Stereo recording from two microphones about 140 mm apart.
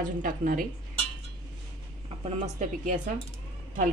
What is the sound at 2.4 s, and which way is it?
Speech, 65° right (ahead or behind).